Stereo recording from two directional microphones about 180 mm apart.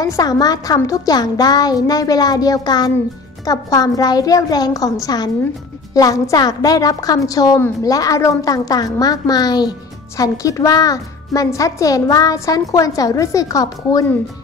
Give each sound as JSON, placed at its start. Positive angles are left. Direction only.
{"t": 0.0, "sound": "speech", "side_deg": 20}